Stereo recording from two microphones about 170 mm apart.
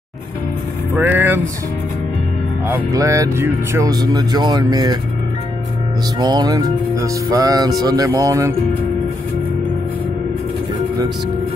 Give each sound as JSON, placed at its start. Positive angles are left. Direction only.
{"t": 0.9, "sound": "vehicle", "side_deg": -10}
{"t": 2.7, "sound": "speech", "side_deg": -20}
{"t": 6.1, "sound": "speech", "side_deg": -25}